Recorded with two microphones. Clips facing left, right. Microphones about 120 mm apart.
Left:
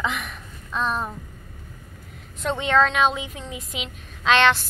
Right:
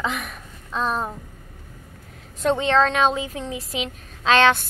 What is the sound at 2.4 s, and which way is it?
Speech, 35° right (ahead or behind).